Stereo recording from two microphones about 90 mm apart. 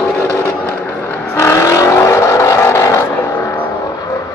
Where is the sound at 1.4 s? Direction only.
35° left (ahead or behind).